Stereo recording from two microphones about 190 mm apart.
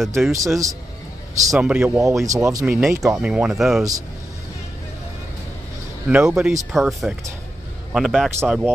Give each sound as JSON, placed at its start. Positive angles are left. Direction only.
{"t": 0.0, "sound": "speech", "side_deg": 0}
{"t": 0.3, "sound": "speech", "side_deg": -15}
{"t": 1.5, "sound": "speech", "side_deg": -5}
{"t": 2.2, "sound": "speech", "side_deg": -15}
{"t": 2.8, "sound": "speech", "side_deg": -5}
{"t": 6.0, "sound": "speech", "side_deg": -5}